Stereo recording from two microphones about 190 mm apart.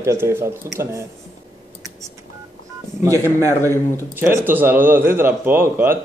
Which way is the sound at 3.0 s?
15° right (ahead or behind).